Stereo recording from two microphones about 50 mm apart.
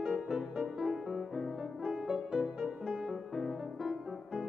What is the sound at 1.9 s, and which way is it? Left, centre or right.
Music, centre.